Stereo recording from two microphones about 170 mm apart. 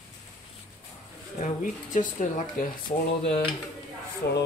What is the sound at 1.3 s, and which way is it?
Speech, 45° left (ahead or behind).